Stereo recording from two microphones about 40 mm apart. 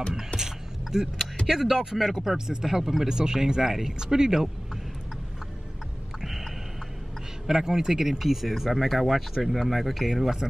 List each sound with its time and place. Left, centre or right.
0.9 s speech: centre
6.2 s a sound: centre
7.4 s speech: centre